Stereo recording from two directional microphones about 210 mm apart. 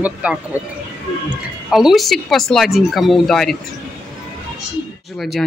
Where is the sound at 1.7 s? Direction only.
Centre (ahead or behind).